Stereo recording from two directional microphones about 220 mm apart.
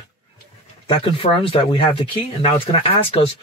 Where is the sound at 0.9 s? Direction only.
25° left (ahead or behind).